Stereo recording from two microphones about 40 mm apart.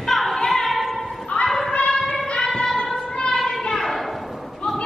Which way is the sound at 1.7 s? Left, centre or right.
Left.